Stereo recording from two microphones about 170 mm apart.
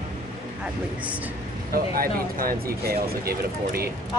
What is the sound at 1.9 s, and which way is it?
Speech, 60° right (ahead or behind).